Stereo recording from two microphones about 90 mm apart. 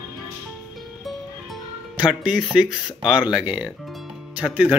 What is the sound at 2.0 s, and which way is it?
Speech, 10° right (ahead or behind).